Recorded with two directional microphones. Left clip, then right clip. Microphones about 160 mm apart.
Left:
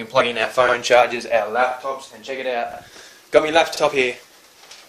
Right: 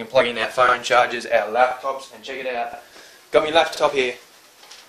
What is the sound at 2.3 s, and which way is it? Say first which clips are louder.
A man's voice: left 2 dB; 15° left (ahead or behind).